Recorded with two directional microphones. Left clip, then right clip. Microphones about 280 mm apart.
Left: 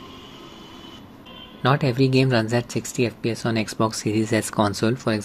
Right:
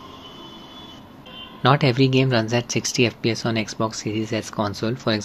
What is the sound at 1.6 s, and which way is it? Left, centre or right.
Speech, centre.